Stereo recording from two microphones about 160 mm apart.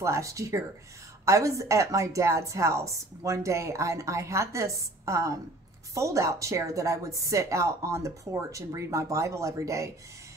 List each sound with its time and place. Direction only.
0.0 s a woman's voice: 20° right (ahead or behind)